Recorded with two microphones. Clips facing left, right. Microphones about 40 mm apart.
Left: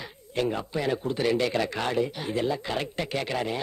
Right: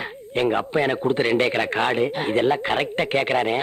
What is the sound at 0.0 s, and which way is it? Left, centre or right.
Speech, right.